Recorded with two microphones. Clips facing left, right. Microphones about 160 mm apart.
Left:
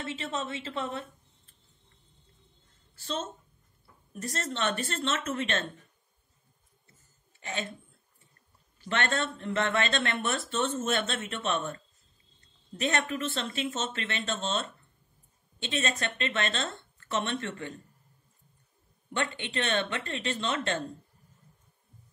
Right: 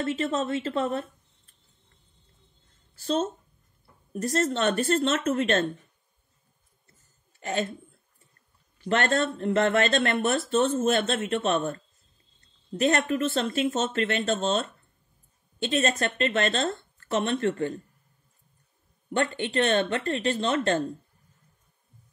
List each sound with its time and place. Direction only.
0.0 s speech: 45° right (ahead or behind)
4.1 s speech: 40° right (ahead or behind)
7.3 s speech: 40° right (ahead or behind)
8.8 s speech: 40° right (ahead or behind)
19.1 s speech: 40° right (ahead or behind)